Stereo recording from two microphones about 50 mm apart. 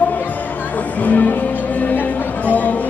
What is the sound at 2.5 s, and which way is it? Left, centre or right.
Chatter, left.